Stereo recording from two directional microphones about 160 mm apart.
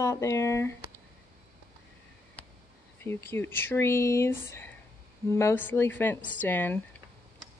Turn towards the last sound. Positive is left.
turn(degrees=10)  # may be behind; listen again after turning